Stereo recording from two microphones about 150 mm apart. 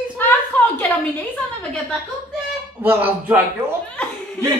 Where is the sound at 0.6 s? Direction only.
10° left (ahead or behind).